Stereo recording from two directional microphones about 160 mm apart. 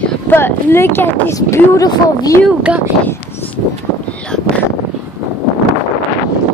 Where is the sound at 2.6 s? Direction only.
10° right (ahead or behind).